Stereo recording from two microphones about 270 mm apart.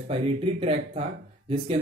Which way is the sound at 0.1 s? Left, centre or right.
Right.